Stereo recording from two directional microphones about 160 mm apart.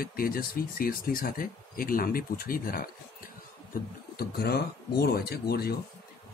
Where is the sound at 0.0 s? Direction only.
65° left (ahead or behind).